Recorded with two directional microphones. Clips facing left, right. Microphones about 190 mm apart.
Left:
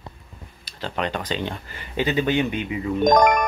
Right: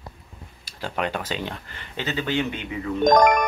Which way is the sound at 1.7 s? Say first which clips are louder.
Left 7 dB; 15° left (ahead or behind).